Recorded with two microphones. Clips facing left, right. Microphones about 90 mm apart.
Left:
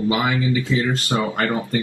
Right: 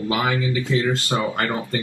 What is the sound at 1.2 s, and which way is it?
Speech, 25° left (ahead or behind).